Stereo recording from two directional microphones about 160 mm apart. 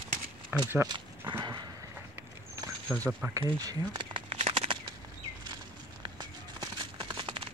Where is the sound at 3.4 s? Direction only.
25° right (ahead or behind).